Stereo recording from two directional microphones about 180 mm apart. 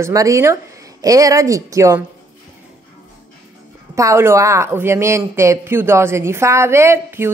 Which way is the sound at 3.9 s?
15° right (ahead or behind).